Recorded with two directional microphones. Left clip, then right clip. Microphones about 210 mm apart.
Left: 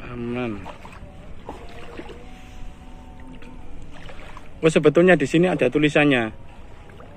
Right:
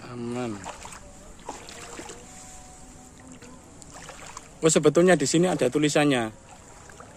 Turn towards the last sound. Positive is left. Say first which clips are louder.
# left 4 dB
turn(degrees=-15)  # may be behind; listen again after turning